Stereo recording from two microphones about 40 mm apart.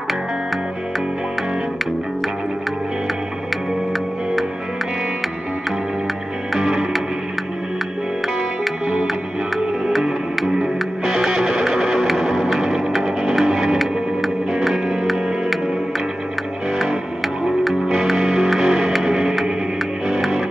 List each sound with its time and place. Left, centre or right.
6.6 s music: centre
10.6 s music: centre
18.1 s music: centre